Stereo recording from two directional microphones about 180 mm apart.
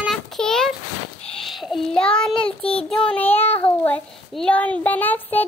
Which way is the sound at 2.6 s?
30° left (ahead or behind).